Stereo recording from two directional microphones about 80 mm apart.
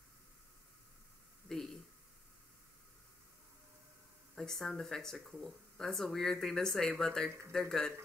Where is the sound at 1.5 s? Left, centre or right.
Centre.